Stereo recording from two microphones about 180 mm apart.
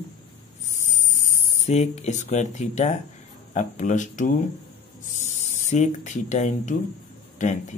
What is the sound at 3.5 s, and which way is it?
Speech, 45° left (ahead or behind).